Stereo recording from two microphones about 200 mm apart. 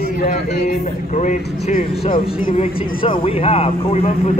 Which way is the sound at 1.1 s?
40° left (ahead or behind).